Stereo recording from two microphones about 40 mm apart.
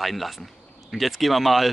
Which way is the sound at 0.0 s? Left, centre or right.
Centre.